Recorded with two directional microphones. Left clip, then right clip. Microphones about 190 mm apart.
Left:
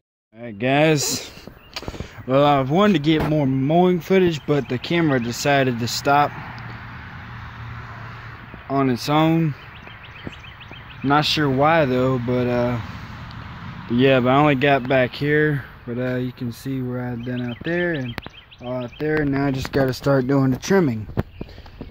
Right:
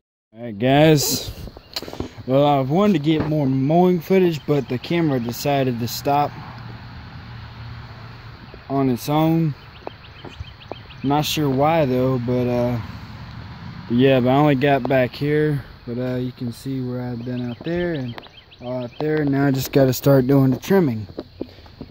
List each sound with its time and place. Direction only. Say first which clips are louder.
0.4 s speech: right 2 dB; 25° right (ahead or behind)
2.2 s speech: left 1 dB; 20° right (ahead or behind)
8.7 s speech: left 1 dB; 10° right (ahead or behind)
11.1 s speech: left 2 dB; 5° right (ahead or behind)
13.9 s speech: even; 15° right (ahead or behind)
18.6 s speech: right 1 dB; 15° right (ahead or behind)
19.4 s speech: right 3 dB; 45° right (ahead or behind)
20.3 s speech: right 2 dB; 20° right (ahead or behind)
20.7 s speech: even; 5° right (ahead or behind)